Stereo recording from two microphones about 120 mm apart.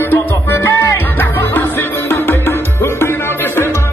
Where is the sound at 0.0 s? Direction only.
15° left (ahead or behind).